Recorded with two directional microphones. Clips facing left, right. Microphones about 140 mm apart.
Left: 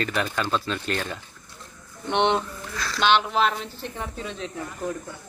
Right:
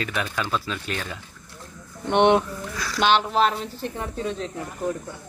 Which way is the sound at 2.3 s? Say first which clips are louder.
Right 5 dB; 10° right (ahead or behind).